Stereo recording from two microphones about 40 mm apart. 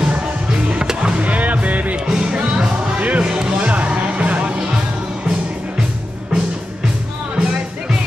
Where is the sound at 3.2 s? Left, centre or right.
Centre.